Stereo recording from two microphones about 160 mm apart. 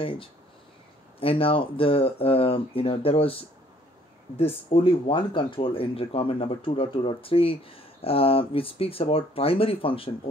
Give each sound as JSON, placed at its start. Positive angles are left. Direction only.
{"t": 0.0, "sound": "speech", "side_deg": 35}